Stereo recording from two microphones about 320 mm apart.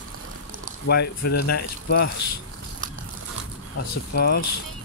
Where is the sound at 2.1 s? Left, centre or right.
Left.